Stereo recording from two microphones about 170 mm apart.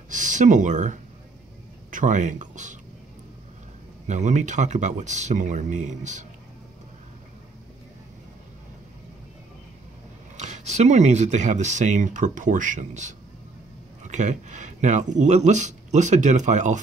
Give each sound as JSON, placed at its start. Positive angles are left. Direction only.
{"t": 0.1, "sound": "speech", "side_deg": -45}
{"t": 4.1, "sound": "speech", "side_deg": -45}
{"t": 10.3, "sound": "speech", "side_deg": -45}